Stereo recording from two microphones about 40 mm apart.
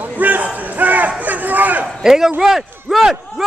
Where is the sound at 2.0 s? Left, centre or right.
Centre.